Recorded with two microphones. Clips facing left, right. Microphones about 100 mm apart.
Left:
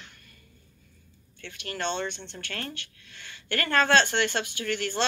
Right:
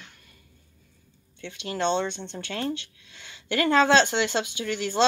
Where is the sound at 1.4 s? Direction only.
20° right (ahead or behind).